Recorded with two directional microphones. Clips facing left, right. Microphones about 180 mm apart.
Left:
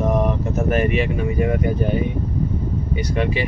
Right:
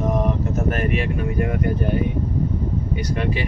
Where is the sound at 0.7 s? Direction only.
Centre (ahead or behind).